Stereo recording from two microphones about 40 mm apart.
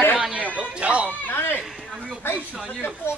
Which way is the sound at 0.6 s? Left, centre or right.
Right.